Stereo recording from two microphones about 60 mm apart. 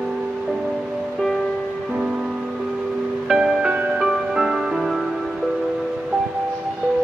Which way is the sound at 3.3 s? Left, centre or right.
Centre.